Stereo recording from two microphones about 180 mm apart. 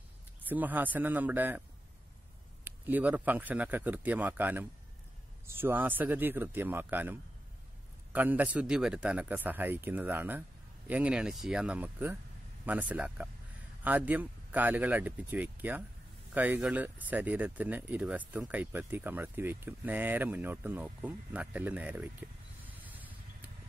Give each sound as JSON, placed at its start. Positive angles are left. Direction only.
{"t": 0.4, "sound": "speech", "side_deg": -10}
{"t": 2.6, "sound": "speech", "side_deg": -10}
{"t": 22.8, "sound": "vehicle", "side_deg": -10}